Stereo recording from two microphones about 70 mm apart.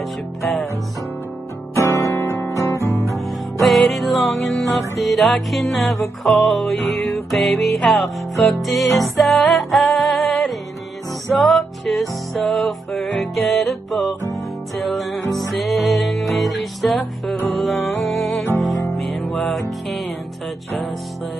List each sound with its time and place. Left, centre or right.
1.9 s music: left
2.2 s guitar: left
3.6 s music: centre